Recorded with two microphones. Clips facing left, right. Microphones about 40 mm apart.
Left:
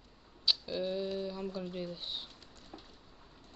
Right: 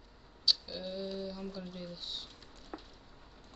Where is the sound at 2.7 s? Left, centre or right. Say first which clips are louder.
Right 5 dB; right.